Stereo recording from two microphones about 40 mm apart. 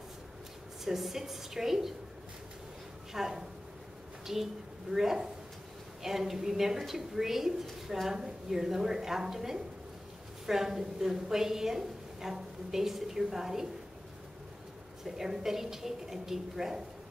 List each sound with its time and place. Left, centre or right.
0.8 s a woman's voice: centre
3.1 s a woman's voice: centre
15.0 s a woman's voice: centre